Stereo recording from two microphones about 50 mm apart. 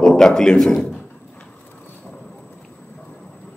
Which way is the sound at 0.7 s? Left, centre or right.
Left.